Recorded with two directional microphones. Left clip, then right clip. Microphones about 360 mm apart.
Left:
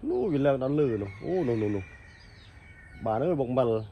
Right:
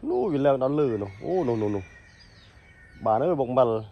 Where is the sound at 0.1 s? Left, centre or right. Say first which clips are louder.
Right 3 dB; centre.